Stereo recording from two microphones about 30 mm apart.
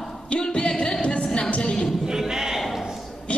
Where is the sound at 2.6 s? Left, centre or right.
Centre.